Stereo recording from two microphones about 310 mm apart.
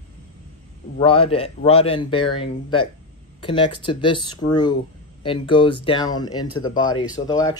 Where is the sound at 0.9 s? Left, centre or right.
Centre.